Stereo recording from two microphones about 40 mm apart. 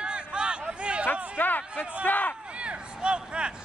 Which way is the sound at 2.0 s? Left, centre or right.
Left.